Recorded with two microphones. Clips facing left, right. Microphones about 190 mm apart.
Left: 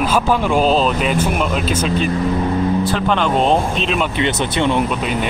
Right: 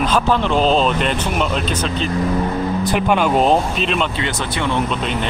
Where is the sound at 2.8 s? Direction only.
15° right (ahead or behind).